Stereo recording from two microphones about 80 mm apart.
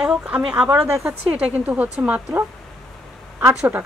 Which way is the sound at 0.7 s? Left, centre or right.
Right.